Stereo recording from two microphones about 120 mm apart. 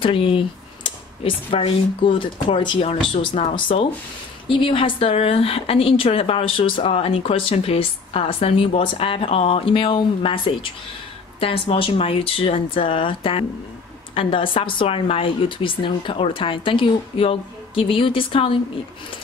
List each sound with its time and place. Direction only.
0.0 s speech: 50° left (ahead or behind)